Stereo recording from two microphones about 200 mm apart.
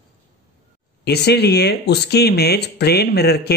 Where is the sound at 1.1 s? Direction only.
55° left (ahead or behind).